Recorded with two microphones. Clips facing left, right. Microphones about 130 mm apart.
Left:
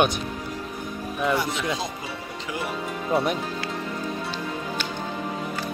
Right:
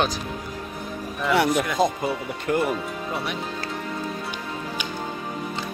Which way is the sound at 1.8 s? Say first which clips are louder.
Right 10 dB; 50° right (ahead or behind).